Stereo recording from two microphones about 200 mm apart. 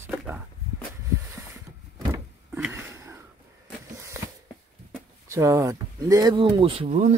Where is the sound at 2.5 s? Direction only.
10° right (ahead or behind).